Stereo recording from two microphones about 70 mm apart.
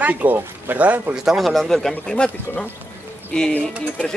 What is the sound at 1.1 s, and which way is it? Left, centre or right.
A man's voice, centre.